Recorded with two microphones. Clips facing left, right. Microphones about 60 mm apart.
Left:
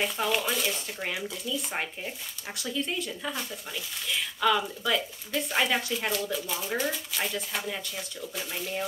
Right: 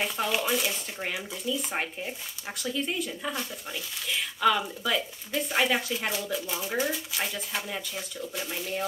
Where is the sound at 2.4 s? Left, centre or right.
Centre.